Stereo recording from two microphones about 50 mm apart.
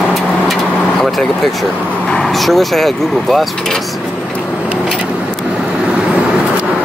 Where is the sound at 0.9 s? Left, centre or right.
Centre.